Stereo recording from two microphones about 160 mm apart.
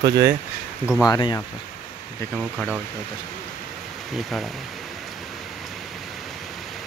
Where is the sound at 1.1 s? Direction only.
25° left (ahead or behind).